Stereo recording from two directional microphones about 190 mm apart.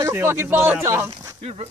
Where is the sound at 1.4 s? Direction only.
30° right (ahead or behind).